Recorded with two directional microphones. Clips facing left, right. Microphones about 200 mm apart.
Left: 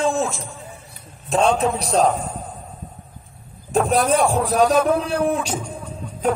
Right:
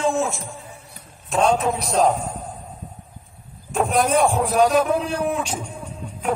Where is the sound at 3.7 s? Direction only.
35° left (ahead or behind).